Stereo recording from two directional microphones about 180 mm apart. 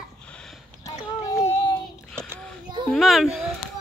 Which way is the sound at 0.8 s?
20° left (ahead or behind).